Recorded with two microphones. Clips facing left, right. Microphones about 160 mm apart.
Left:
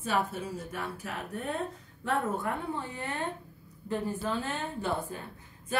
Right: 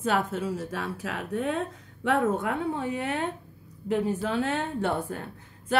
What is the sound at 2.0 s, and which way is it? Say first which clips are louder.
A woman's voice: right 6 dB; 75° right (ahead or behind).